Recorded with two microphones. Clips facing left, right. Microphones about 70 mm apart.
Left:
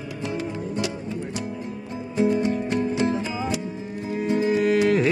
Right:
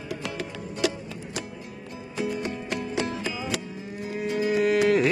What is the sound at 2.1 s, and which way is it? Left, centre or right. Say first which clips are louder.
Music: left 8 dB; left.